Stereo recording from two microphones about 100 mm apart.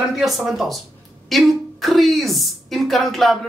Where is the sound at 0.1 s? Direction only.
Centre (ahead or behind).